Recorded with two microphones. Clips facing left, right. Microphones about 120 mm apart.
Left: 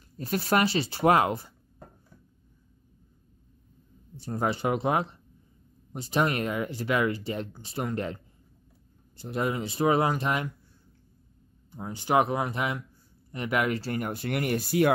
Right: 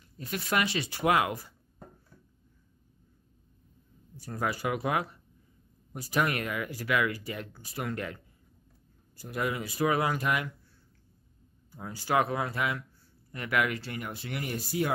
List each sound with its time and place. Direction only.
0.2 s speech: 35° left (ahead or behind)
4.2 s speech: 25° left (ahead or behind)
11.7 s speech: 20° left (ahead or behind); by 14.9 s 65° left (ahead or behind)